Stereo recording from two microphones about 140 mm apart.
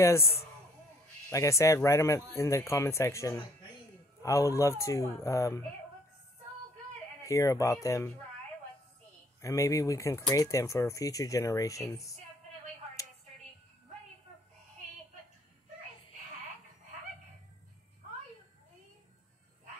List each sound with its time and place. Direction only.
0.0 s a man's voice: 20° left (ahead or behind)
7.2 s a man's voice: 20° left (ahead or behind)
9.4 s a man's voice: 20° left (ahead or behind)